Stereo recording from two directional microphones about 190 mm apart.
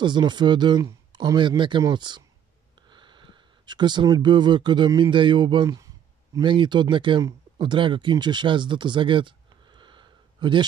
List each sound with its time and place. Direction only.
0.0 s speech: 25° right (ahead or behind)